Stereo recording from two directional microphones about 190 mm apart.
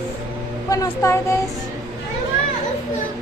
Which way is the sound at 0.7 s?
15° left (ahead or behind).